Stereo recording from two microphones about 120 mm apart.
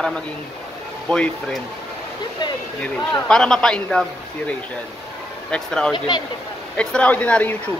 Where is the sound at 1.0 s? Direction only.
5° left (ahead or behind).